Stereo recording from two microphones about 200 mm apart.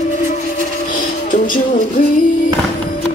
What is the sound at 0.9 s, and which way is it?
Music, 40° left (ahead or behind).